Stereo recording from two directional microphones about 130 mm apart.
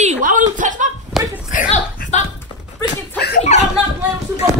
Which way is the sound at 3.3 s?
65° left (ahead or behind).